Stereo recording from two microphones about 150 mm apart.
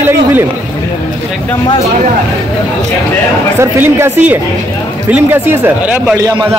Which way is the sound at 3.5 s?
15° right (ahead or behind).